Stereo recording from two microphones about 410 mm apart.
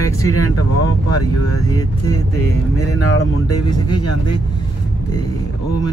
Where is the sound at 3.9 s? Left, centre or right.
Left.